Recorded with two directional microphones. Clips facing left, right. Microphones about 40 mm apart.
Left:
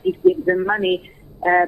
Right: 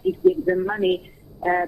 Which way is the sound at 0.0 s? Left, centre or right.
Left.